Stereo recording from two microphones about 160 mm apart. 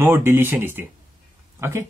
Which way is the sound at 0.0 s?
15° right (ahead or behind).